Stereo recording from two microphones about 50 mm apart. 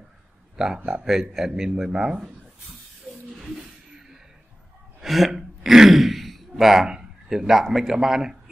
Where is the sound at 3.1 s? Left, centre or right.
Left.